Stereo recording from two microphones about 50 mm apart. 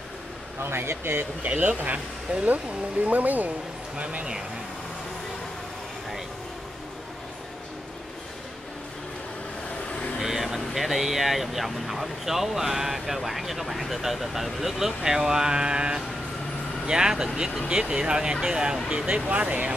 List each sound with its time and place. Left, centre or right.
0.7 s speech: right
1.4 s speech: right
3.9 s speech: right
10.1 s speech: centre; by 19.7 s right